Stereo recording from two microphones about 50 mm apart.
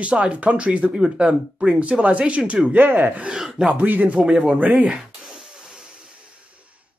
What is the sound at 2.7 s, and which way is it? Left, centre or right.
Speech, right.